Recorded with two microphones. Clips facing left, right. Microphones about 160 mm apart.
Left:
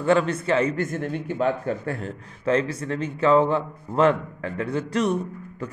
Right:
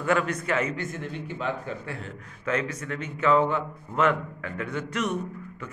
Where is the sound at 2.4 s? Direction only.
30° left (ahead or behind).